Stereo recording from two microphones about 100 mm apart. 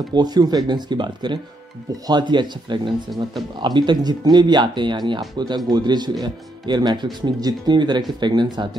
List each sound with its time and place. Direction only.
0.1 s speech: 45° right (ahead or behind)